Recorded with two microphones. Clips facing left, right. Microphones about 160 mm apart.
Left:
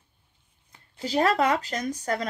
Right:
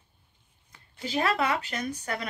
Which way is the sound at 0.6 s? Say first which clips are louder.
Left 4 dB; 35° left (ahead or behind).